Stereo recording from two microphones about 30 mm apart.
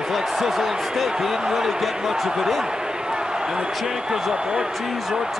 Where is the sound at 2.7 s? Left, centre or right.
Right.